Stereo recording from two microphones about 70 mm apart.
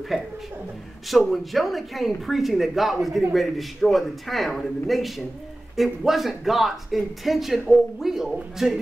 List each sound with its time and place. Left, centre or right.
0.1 s speech: centre